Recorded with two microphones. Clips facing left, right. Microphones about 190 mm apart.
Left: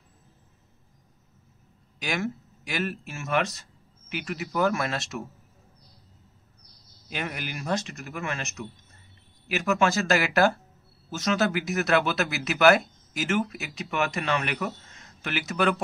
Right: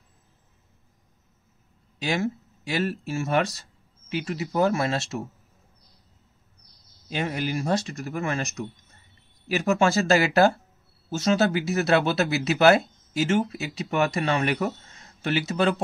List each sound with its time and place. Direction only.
2.0 s speech: 30° right (ahead or behind)
7.1 s speech: 30° right (ahead or behind)